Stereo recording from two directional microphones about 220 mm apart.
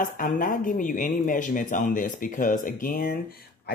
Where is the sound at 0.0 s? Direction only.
40° left (ahead or behind).